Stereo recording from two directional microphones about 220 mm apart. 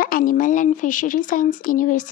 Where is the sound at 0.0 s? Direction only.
40° left (ahead or behind).